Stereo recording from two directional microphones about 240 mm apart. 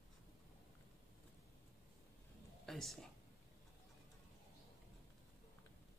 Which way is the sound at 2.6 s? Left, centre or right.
Centre.